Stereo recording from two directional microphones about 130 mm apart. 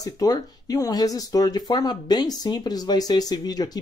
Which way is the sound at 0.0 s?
30° left (ahead or behind).